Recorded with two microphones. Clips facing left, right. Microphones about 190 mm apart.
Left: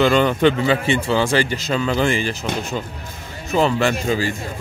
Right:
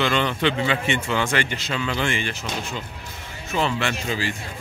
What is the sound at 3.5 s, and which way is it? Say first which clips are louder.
Speech: left 6 dB; 40° left (ahead or behind).